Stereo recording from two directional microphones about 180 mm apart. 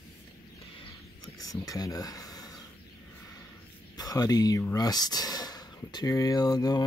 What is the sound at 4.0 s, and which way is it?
Speech, 20° left (ahead or behind).